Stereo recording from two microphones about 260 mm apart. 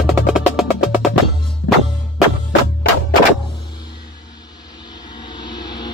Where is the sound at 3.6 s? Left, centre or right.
Centre.